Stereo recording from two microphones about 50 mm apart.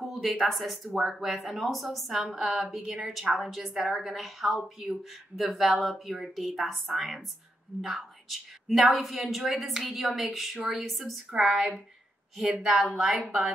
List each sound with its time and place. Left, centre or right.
0.0 s a sound: centre
0.5 s a woman's voice: centre
6.6 s a woman's voice: centre